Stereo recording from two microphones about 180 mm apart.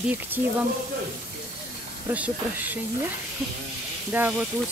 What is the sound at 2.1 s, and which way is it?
Speech, 10° right (ahead or behind).